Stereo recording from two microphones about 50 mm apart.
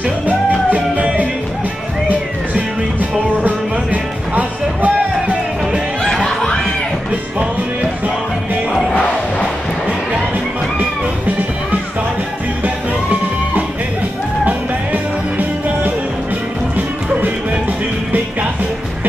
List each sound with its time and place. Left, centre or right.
0.7 s music: right
6.2 s snicker: centre
12.6 s music: right